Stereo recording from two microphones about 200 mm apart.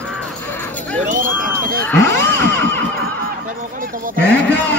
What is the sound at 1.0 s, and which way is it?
Speech, 40° right (ahead or behind).